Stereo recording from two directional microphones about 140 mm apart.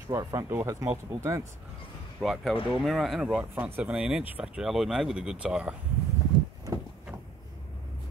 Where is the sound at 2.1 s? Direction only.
Centre (ahead or behind).